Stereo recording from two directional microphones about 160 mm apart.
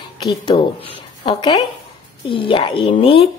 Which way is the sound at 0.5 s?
35° left (ahead or behind).